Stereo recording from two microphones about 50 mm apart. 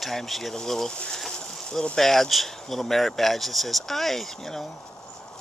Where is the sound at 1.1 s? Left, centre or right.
Centre.